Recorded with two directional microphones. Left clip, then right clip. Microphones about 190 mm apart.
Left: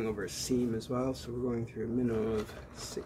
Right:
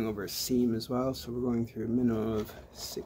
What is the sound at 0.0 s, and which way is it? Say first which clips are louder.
Speech: right 1 dB; 50° right (ahead or behind).